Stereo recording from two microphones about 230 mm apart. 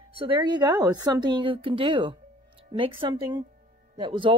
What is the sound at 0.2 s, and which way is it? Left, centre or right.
A woman's voice, right.